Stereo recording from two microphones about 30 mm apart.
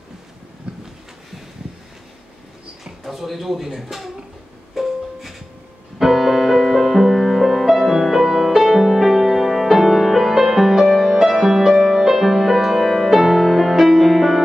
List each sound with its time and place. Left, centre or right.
0.7 s a sound: right
3.0 s speech: centre
4.8 s music: centre
5.9 s music: centre